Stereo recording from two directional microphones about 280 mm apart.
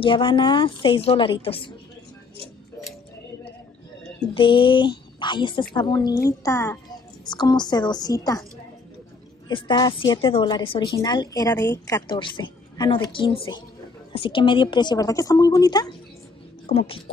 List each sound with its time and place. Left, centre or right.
0.0 s a woman's voice: centre
4.3 s a woman's voice: centre
9.5 s a woman's voice: centre